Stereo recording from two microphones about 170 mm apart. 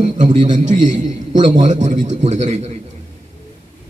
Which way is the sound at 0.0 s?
45° right (ahead or behind).